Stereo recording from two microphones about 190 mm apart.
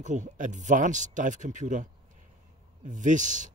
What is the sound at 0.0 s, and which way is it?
Speech, 40° right (ahead or behind).